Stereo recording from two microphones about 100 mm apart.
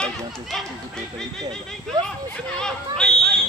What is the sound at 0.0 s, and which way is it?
Chatter, 5° left (ahead or behind).